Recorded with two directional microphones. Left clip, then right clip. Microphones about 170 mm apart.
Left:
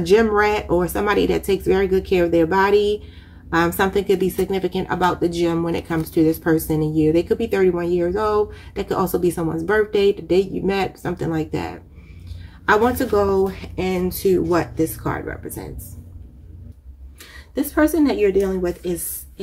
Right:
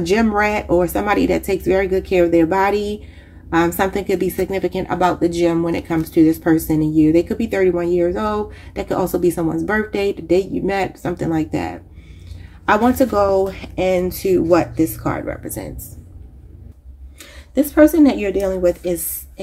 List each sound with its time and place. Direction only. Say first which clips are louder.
0.0 s a woman's voice: left 1 dB; 25° right (ahead or behind)
17.6 s a woman's voice: right 6 dB; 40° right (ahead or behind)